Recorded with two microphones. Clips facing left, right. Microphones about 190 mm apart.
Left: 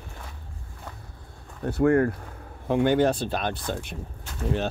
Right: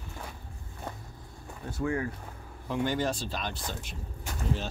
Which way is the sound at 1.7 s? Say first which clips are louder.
Left 11 dB; 60° left (ahead or behind).